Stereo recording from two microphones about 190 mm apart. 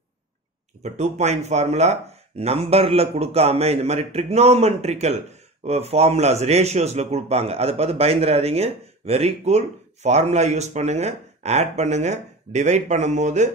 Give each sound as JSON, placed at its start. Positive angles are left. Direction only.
{"t": 0.8, "sound": "speech", "side_deg": -35}